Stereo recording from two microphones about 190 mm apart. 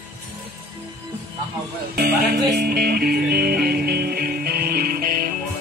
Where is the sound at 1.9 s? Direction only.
55° right (ahead or behind).